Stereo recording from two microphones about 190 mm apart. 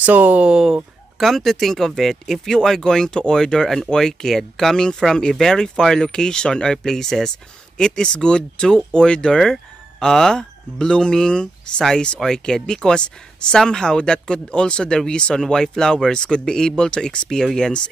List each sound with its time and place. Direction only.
0.0 s speech: 10° right (ahead or behind)